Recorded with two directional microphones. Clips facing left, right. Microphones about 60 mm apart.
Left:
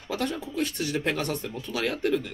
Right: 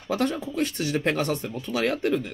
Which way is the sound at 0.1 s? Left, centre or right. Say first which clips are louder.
Right 4 dB; right.